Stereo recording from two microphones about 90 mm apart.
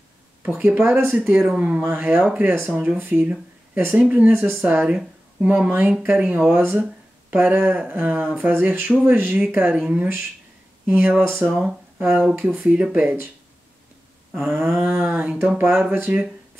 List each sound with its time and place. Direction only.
0.6 s speech: 20° right (ahead or behind)
1.3 s speech: 5° right (ahead or behind)
1.6 s speech: 15° right (ahead or behind)
6.5 s speech: 25° right (ahead or behind)
11.4 s speech: 10° right (ahead or behind)
14.3 s speech: 20° right (ahead or behind)